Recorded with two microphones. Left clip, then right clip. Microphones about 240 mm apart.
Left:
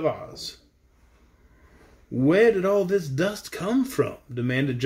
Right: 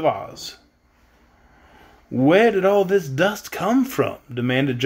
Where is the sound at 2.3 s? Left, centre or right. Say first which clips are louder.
Right 3 dB; centre.